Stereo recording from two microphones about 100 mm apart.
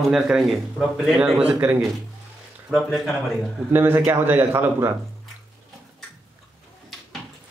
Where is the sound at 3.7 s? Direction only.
20° right (ahead or behind).